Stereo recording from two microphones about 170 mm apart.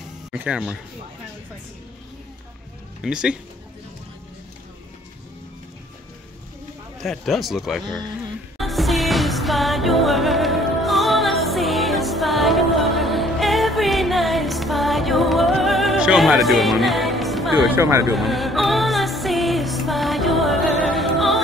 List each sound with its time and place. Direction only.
0.3 s speech: 10° right (ahead or behind)
3.0 s speech: 5° right (ahead or behind)
7.0 s speech: centre (ahead or behind)
8.5 s music: centre (ahead or behind)
17.7 s speech: 15° right (ahead or behind)
18.1 s music: centre (ahead or behind)